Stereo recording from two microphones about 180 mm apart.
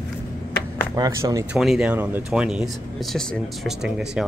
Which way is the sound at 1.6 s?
Centre (ahead or behind).